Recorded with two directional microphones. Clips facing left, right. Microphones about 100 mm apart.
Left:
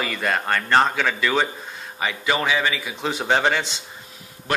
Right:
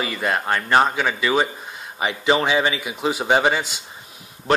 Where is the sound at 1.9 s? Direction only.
25° right (ahead or behind).